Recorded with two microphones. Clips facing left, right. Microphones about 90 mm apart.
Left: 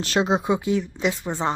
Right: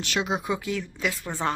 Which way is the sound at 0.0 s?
35° left (ahead or behind).